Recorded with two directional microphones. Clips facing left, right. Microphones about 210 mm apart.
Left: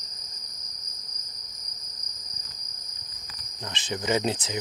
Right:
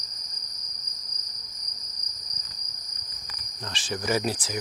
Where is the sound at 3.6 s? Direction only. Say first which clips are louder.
Even; 20° left (ahead or behind).